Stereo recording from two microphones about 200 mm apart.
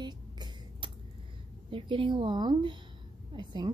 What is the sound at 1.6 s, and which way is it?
A woman's voice, 25° right (ahead or behind).